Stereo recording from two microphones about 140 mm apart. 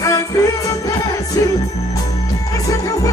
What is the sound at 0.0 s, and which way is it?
Music, 25° left (ahead or behind).